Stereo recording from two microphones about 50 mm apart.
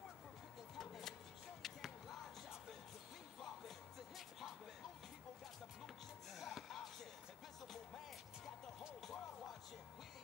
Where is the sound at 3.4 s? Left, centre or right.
Centre.